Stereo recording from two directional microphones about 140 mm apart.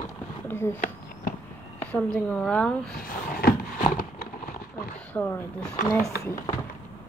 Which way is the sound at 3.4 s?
90° left.